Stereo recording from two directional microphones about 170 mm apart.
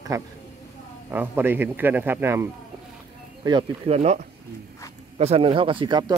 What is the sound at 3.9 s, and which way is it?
Speech, 40° right (ahead or behind).